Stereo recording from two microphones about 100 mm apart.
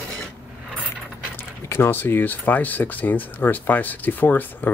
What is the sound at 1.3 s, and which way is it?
Speech, 25° left (ahead or behind).